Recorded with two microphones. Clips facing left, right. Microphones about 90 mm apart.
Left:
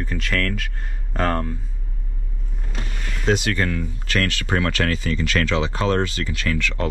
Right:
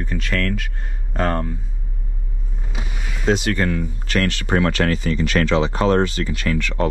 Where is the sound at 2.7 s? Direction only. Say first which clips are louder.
Even; 10° right (ahead or behind).